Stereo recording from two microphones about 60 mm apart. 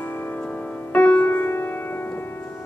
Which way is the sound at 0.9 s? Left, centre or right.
Left.